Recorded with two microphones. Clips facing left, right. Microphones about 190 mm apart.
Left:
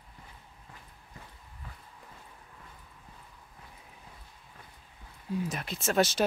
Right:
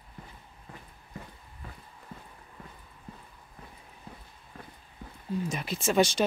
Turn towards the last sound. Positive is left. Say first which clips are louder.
# right 2 dB
turn(degrees=5)  # may be behind; listen again after turning